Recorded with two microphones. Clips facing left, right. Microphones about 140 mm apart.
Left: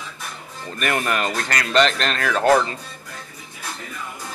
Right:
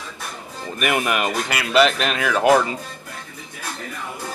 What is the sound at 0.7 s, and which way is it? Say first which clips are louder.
Speech: right 2 dB; 10° right (ahead or behind).